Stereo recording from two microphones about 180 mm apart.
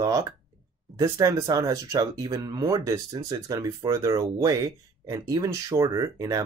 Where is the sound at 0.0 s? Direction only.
20° right (ahead or behind).